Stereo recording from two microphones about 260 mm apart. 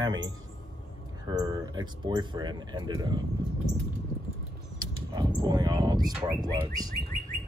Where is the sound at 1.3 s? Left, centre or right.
Centre.